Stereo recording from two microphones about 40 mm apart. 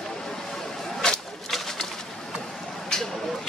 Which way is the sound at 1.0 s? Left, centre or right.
Centre.